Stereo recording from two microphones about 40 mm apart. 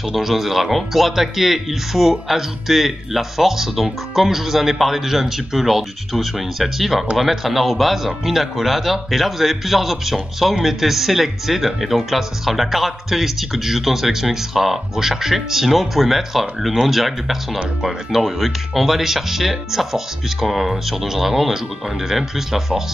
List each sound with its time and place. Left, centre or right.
0.1 s speech: centre